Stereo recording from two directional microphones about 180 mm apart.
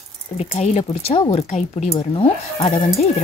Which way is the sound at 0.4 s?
35° left (ahead or behind).